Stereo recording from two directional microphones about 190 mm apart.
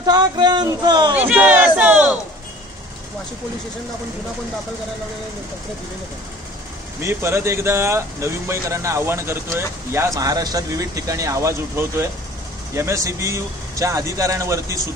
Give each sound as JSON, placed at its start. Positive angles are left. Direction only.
{"t": 0.0, "sound": "a sound", "side_deg": -20}
{"t": 1.1, "sound": "crowd", "side_deg": -10}
{"t": 7.0, "sound": "speech", "side_deg": -15}